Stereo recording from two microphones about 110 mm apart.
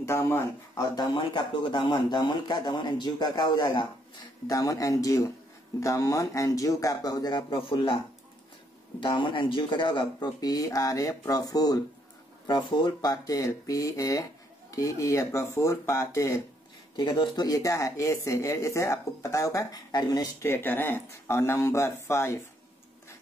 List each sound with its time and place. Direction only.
0.0 s speech: 25° left (ahead or behind)
1.1 s speech: 45° left (ahead or behind)
4.5 s speech: 30° left (ahead or behind); by 8.0 s 50° left (ahead or behind)
9.0 s speech: 50° left (ahead or behind); by 16.3 s 25° left (ahead or behind)
16.9 s speech: 45° left (ahead or behind)
17.5 s speech: 30° left (ahead or behind)
20.4 s speech: 20° left (ahead or behind)